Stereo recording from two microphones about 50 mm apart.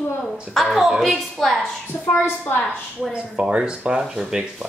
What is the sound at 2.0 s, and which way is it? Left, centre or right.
Speech, left.